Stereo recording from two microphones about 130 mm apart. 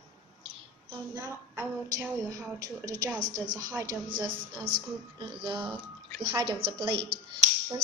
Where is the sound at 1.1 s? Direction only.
20° right (ahead or behind).